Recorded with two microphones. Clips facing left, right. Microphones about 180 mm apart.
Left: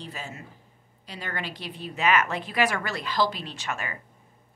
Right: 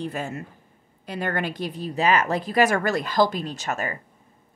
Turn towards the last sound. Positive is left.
turn(degrees=-40)  # may be behind; listen again after turning